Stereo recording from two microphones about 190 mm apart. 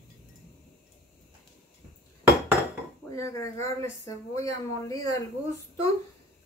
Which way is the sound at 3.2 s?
15° left (ahead or behind).